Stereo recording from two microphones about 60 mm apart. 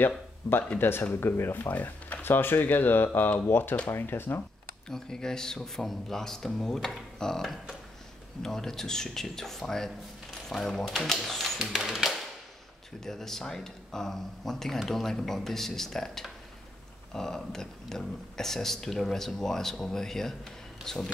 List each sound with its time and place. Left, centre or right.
0.7 s speech: left
4.8 s speech: centre
13.0 s speech: centre